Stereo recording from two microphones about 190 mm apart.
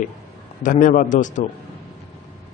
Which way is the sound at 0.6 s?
45° left (ahead or behind).